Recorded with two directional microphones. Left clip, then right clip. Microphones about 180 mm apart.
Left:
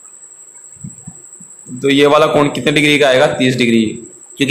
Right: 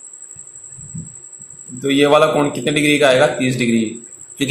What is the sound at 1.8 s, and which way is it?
A man's voice, 25° left (ahead or behind).